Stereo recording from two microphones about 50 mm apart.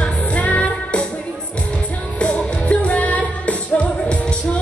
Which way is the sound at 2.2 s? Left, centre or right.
Left.